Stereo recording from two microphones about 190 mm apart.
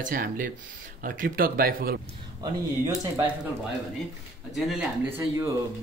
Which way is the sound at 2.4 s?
20° right (ahead or behind).